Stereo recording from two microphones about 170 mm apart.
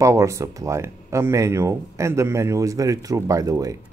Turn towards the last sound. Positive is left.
turn(degrees=-20)  # may be behind; listen again after turning